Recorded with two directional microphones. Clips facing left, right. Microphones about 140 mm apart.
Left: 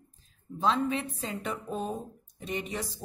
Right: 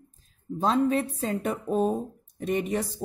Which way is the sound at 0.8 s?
40° right (ahead or behind).